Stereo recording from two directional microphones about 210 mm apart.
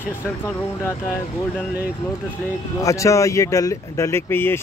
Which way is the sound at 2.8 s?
15° left (ahead or behind).